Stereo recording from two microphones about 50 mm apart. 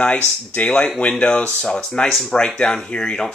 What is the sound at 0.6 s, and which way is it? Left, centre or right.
Speech, left.